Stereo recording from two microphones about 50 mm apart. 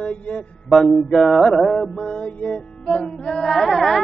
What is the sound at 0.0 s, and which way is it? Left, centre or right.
Music, left.